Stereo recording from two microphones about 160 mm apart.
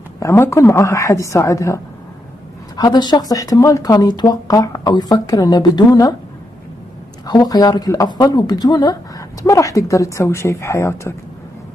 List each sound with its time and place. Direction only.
0.2 s speech: 15° left (ahead or behind)
7.2 s speech: 25° left (ahead or behind)